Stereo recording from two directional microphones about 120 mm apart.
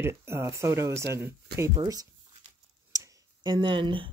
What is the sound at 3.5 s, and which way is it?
Speech, 45° right (ahead or behind).